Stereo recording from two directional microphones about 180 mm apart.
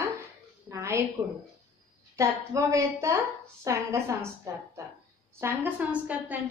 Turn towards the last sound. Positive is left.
turn(degrees=-5)  # may be behind; listen again after turning